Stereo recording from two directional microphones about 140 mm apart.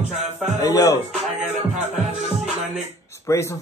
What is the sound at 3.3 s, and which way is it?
Speech, 20° left (ahead or behind).